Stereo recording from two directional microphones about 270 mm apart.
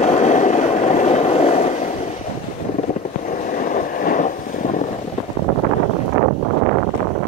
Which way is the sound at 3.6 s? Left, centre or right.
Left.